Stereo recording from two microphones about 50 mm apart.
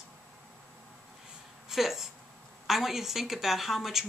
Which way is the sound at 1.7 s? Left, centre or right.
Centre.